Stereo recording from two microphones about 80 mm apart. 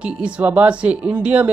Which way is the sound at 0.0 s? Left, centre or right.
Centre.